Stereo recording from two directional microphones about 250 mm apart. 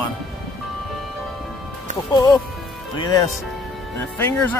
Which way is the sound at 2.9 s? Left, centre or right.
Centre.